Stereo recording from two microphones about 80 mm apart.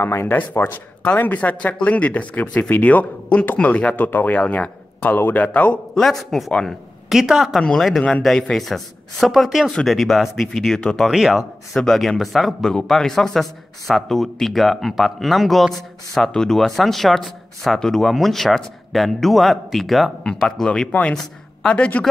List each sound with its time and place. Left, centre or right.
0.0 s speech: left
5.9 s speech: centre